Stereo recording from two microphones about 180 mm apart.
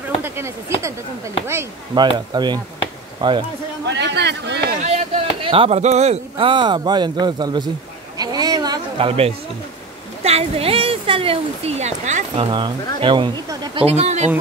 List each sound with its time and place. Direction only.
0.7 s speech: 15° right (ahead or behind)
2.0 s speech: 25° right (ahead or behind)
3.8 s a sound: 70° right (ahead or behind)
4.8 s speech: 35° right (ahead or behind)
8.2 s a sound: 20° right (ahead or behind)
10.2 s speech: 35° right (ahead or behind)
12.4 s speech: 25° right (ahead or behind)